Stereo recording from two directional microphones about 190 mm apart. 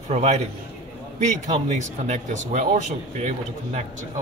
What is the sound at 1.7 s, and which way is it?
Speech, 40° right (ahead or behind).